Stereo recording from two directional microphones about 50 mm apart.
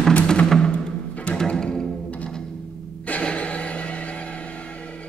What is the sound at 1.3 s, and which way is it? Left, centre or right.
Music, centre.